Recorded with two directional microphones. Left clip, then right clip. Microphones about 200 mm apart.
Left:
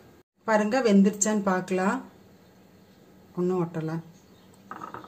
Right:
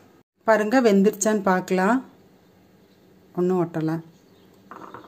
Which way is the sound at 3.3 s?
40° right (ahead or behind).